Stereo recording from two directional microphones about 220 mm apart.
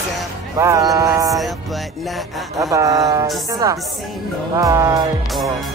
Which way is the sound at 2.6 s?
15° right (ahead or behind).